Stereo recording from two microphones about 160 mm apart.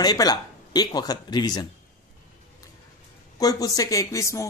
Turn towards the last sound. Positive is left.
turn(degrees=20)  # may be behind; listen again after turning